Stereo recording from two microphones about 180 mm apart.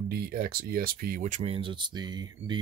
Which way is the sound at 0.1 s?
55° right (ahead or behind).